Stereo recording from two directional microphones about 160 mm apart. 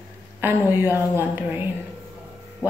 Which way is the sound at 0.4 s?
15° right (ahead or behind).